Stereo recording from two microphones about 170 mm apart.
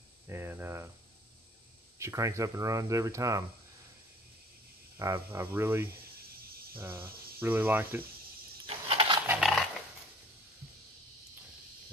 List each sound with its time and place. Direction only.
0.3 s a sound: 15° right (ahead or behind)
2.0 s speech: 15° right (ahead or behind)
4.9 s speech: 20° right (ahead or behind)
8.6 s coin: 35° right (ahead or behind)
9.2 s dog: 10° right (ahead or behind)